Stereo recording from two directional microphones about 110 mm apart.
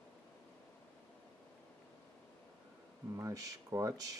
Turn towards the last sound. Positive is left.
turn(degrees=-30)  # may be behind; listen again after turning